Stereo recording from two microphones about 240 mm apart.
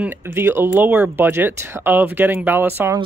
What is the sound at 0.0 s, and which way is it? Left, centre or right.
Speech, centre.